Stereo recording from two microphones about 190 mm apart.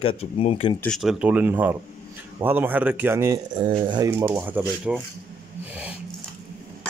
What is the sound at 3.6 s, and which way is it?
Speech, 25° right (ahead or behind).